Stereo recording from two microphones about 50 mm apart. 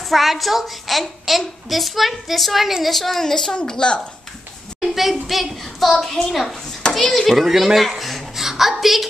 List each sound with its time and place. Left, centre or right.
0.1 s a woman's voice: centre
4.7 s a child's voice: centre